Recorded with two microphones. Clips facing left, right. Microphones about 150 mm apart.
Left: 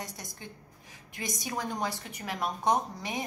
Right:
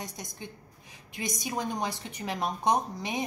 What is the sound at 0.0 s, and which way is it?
A woman's voice, 20° right (ahead or behind).